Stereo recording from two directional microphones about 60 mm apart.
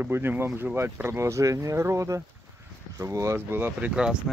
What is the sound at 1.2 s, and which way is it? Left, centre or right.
Speech, right.